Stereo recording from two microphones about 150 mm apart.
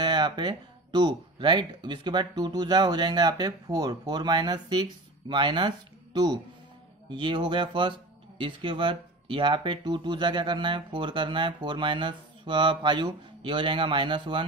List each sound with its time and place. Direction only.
0.0 s speech: 30° right (ahead or behind)